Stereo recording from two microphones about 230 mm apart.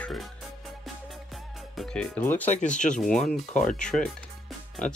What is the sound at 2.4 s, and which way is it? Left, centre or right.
Speech, left.